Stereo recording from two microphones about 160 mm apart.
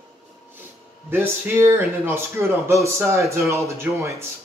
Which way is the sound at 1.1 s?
15° right (ahead or behind).